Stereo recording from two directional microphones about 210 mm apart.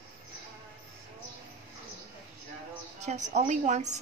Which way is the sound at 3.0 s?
35° right (ahead or behind).